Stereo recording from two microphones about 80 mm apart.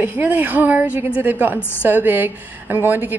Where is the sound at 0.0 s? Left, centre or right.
Right.